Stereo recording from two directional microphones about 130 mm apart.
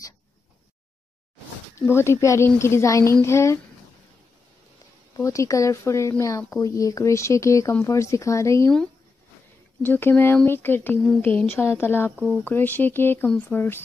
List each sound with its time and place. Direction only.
1.8 s a woman's voice: 20° left (ahead or behind)
5.1 s a woman's voice: 25° left (ahead or behind)
9.8 s speech: 15° left (ahead or behind)